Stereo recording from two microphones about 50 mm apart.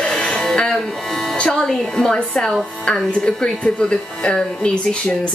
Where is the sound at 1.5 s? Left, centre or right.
Centre.